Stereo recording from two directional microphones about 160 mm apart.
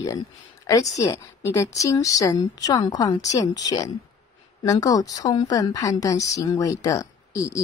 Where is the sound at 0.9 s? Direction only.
20° left (ahead or behind).